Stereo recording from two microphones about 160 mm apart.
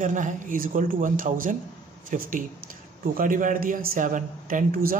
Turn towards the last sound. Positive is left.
turn(degrees=-60)  # may be behind; listen again after turning